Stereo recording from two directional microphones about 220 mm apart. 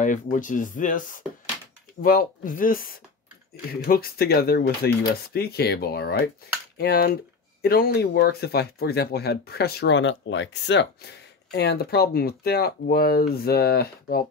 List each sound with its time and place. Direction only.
0.0 s speech: 35° left (ahead or behind)